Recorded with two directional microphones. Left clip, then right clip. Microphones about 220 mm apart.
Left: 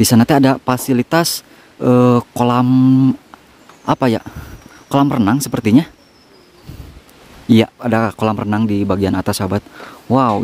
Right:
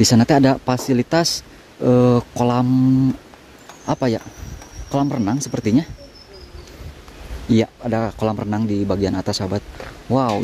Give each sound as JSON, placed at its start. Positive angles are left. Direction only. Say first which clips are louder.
{"t": 0.0, "sound": "speech", "louder": "left 2 dB", "side_deg": 10}
{"t": 7.4, "sound": "speech", "louder": "left 5 dB", "side_deg": 20}